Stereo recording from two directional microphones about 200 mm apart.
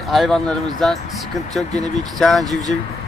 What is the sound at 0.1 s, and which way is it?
Speech, centre (ahead or behind).